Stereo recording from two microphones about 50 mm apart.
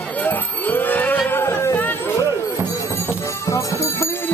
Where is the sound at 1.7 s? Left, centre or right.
Left.